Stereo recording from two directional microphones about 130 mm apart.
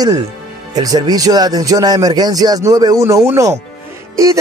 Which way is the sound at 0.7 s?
30° right (ahead or behind).